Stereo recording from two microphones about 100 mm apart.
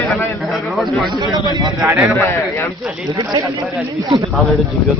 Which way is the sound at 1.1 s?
45° right (ahead or behind).